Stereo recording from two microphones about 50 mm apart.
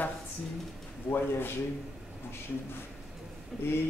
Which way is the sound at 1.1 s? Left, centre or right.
Left.